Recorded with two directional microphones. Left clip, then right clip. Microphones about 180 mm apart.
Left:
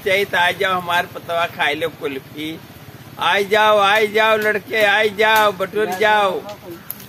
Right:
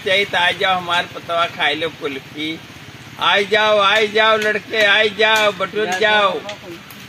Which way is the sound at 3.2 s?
30° left (ahead or behind).